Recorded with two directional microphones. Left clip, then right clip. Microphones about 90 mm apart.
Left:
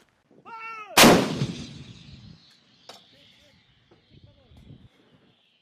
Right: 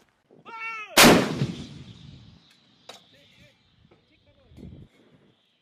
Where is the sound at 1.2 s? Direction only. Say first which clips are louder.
Even; 25° left (ahead or behind).